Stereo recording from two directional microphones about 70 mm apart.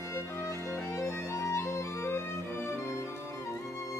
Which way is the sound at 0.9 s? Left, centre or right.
Left.